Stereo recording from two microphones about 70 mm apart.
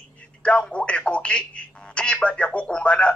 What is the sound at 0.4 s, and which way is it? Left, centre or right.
Speech, centre.